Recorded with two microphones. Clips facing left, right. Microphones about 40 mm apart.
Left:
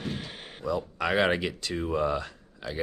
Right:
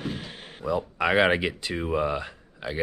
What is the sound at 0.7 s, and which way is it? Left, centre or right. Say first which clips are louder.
Speech: right 3 dB; centre.